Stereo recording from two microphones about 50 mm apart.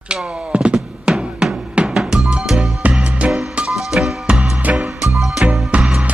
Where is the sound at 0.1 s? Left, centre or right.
Right.